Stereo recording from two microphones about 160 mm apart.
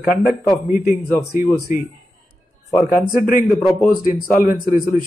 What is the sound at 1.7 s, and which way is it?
A man's voice, 55° left (ahead or behind).